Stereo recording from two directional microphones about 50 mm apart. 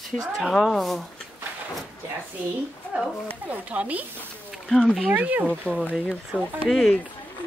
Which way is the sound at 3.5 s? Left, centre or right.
Right.